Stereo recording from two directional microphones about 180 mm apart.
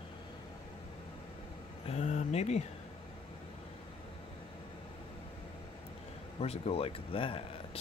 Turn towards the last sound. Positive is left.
turn(degrees=30)  # may be behind; listen again after turning